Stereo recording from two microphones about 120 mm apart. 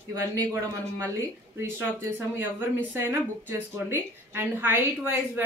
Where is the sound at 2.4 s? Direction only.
15° right (ahead or behind).